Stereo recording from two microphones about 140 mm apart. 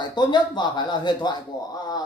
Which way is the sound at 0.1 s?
30° left (ahead or behind).